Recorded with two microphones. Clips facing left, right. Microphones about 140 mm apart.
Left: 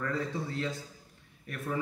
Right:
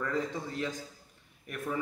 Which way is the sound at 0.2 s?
15° right (ahead or behind).